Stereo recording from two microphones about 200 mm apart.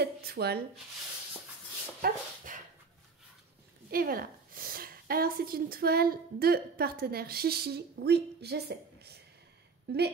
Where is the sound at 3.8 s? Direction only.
45° right (ahead or behind).